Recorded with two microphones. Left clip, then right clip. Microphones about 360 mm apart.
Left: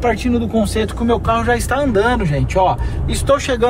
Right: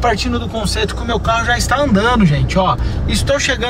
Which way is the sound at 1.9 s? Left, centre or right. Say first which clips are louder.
Right 1 dB; left.